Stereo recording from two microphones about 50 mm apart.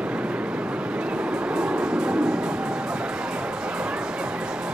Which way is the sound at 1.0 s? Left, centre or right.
Centre.